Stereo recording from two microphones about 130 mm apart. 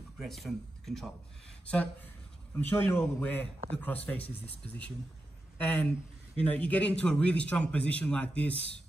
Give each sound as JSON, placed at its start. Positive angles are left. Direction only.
{"t": 0.2, "sound": "speech", "side_deg": 0}
{"t": 2.5, "sound": "speech", "side_deg": 20}
{"t": 5.6, "sound": "speech", "side_deg": 10}